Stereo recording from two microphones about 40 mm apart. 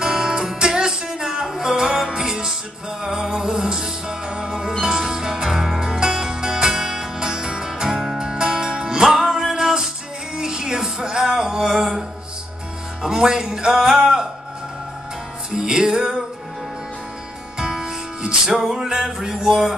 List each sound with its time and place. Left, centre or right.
0.0 s music: centre
13.0 s music: centre
15.5 s music: centre
17.6 s music: centre